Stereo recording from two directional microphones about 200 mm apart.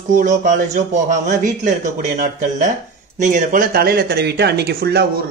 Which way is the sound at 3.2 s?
40° right (ahead or behind).